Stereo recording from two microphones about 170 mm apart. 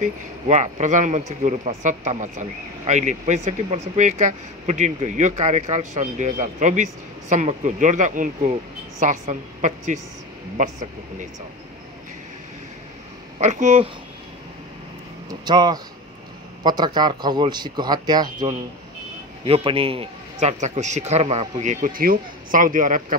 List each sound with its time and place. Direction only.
0.0 s speech: 45° right (ahead or behind)
13.4 s speech: 45° right (ahead or behind)
15.2 s a man's voice: 25° right (ahead or behind); by 23.1 s 50° right (ahead or behind)